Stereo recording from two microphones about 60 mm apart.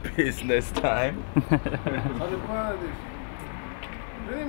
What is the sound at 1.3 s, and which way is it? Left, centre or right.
A man's voice, centre.